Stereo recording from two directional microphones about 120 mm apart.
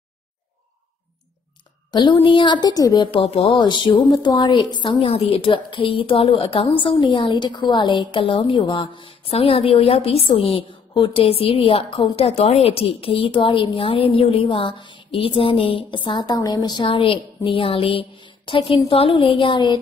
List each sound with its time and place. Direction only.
1.9 s a woman's voice: 40° left (ahead or behind)